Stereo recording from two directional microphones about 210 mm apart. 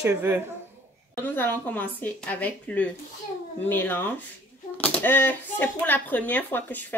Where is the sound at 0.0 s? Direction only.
10° right (ahead or behind).